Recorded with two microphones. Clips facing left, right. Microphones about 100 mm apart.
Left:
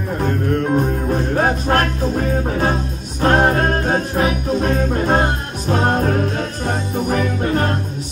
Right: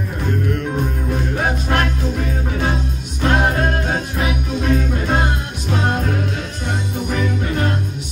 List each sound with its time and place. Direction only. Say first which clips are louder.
0.2 s music: left 3 dB; 40° left (ahead or behind)